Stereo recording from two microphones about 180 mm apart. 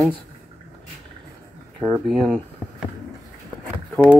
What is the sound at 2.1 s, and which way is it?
Speech, centre (ahead or behind).